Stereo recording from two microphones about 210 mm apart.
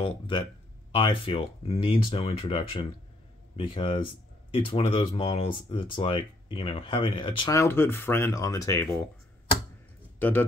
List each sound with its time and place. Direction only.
0.0 s speech: 20° left (ahead or behind)
10.1 s speech: 10° left (ahead or behind)